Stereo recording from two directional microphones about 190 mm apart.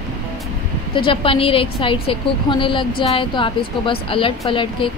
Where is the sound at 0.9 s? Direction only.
25° left (ahead or behind).